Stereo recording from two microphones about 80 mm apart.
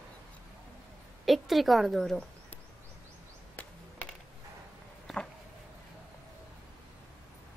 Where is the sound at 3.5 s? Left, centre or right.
Centre.